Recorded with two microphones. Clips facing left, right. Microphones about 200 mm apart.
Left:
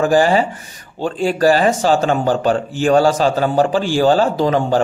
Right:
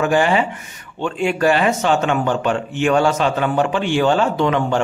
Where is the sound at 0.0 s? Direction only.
35° left (ahead or behind).